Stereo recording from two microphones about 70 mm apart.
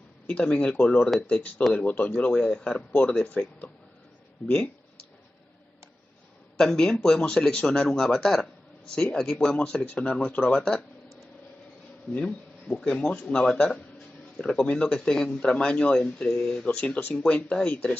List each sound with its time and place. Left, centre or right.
0.3 s a man's voice: centre
2.9 s speech: left
6.6 s a man's voice: centre
12.1 s a man's voice: centre